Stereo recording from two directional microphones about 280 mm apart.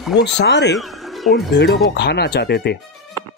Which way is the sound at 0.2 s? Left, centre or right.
Left.